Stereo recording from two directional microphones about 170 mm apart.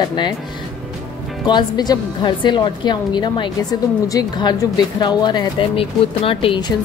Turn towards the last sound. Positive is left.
turn(degrees=30)  # may be behind; listen again after turning